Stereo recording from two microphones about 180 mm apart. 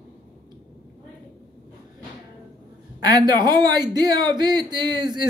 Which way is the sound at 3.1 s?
20° right (ahead or behind).